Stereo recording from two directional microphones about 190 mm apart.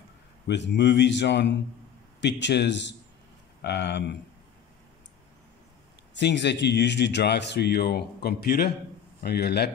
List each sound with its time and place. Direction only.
0.5 s a man's voice: 65° left (ahead or behind)
6.1 s speech: 65° left (ahead or behind)